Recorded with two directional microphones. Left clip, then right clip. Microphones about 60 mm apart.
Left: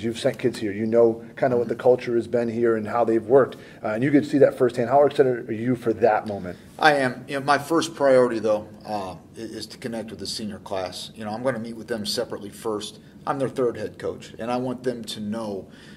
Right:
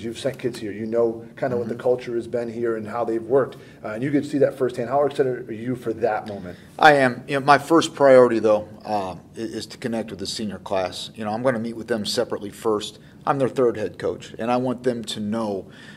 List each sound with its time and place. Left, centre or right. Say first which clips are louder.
0.0 s speech: left 3 dB; left
6.8 s a man's voice: right 4 dB; right